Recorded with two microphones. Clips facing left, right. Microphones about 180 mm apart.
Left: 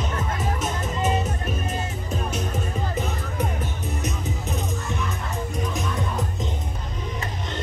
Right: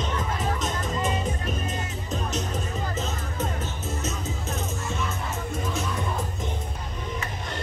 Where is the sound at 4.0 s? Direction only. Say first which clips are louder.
Left 2 dB; 15° left (ahead or behind).